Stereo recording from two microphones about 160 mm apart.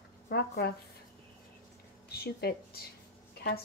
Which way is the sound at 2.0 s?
75° left (ahead or behind).